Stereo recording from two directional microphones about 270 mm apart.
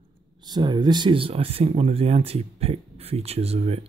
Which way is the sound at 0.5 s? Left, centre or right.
Centre.